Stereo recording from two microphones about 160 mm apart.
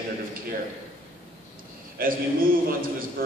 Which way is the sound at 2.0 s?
65° right (ahead or behind).